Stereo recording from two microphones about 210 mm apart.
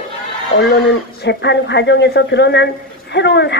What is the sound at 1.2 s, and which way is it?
A woman's voice, 55° left (ahead or behind).